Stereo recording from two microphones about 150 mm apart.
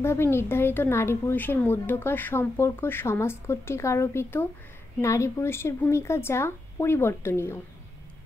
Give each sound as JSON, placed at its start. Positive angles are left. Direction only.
{"t": 0.0, "sound": "speech", "side_deg": 15}